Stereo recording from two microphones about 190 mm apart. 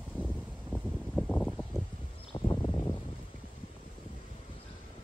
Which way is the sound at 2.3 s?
20° left (ahead or behind).